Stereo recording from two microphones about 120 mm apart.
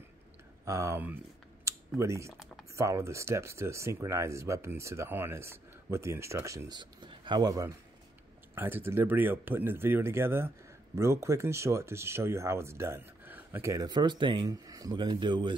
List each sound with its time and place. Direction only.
0.7 s speech: 25° right (ahead or behind)
1.0 s a sound: 20° right (ahead or behind)
2.0 s speech: 25° right (ahead or behind)
6.8 s speech: 40° right (ahead or behind)
8.5 s speech: 20° right (ahead or behind); by 15.5 s 40° right (ahead or behind)